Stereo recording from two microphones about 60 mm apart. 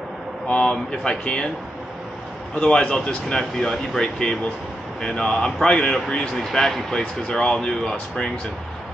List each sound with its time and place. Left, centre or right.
0.5 s speech: centre
2.8 s speech: centre